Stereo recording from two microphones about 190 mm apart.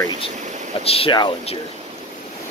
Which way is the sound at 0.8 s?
30° left (ahead or behind).